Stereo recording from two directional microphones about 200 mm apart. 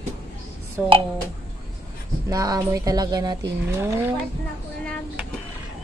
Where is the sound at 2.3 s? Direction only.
15° right (ahead or behind).